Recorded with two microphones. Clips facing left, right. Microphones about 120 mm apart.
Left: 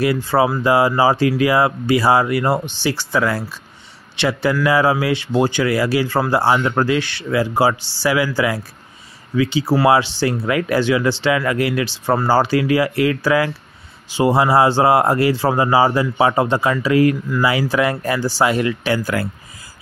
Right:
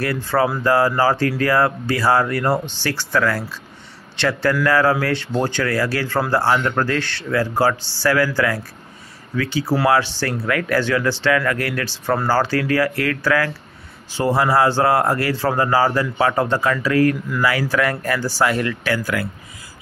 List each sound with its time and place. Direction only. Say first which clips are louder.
0.0 s speech: left 3 dB; 15° left (ahead or behind)